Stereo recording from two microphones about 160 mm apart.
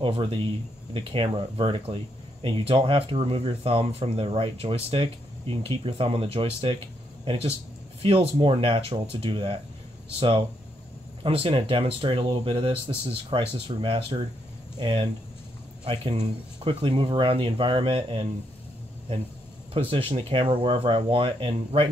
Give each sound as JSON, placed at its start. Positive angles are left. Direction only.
{"t": 0.0, "sound": "speech", "side_deg": -35}
{"t": 11.2, "sound": "speech", "side_deg": -35}
{"t": 19.7, "sound": "speech", "side_deg": -35}